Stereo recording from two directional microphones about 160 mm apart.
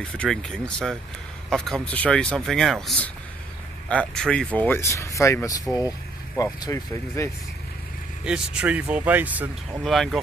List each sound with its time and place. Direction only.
0.2 s speech: 5° left (ahead or behind); by 7.2 s 20° left (ahead or behind)
8.3 s speech: 5° right (ahead or behind)
9.8 s speech: centre (ahead or behind)